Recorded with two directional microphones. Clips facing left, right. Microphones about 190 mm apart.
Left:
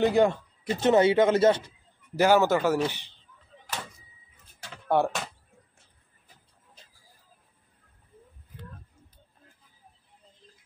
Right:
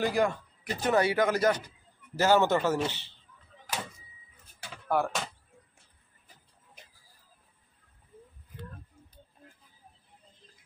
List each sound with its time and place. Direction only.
0.0 s speech: 25° left (ahead or behind)
2.1 s speech: 10° left (ahead or behind)
4.8 s speech: 25° left (ahead or behind)